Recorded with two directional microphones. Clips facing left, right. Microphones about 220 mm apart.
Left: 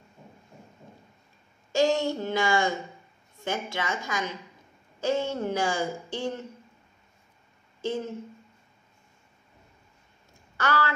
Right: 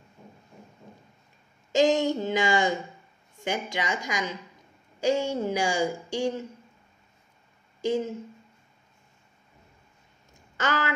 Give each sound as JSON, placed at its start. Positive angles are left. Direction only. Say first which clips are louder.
{"t": 1.7, "sound": "speech", "louder": "right 2 dB", "side_deg": -20}
{"t": 7.8, "sound": "speech", "louder": "right 4 dB", "side_deg": -15}
{"t": 10.6, "sound": "speech", "louder": "left 1 dB", "side_deg": -20}